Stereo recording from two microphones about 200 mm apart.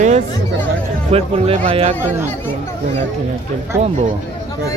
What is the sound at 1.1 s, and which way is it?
Speech, 30° right (ahead or behind).